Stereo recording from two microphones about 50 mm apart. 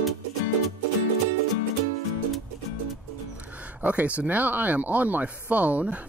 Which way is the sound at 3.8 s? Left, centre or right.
Right.